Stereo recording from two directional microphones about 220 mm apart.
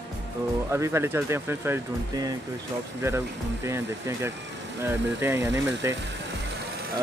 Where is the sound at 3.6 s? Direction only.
10° right (ahead or behind).